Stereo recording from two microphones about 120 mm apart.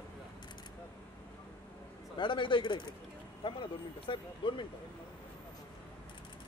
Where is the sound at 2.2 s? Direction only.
45° left (ahead or behind).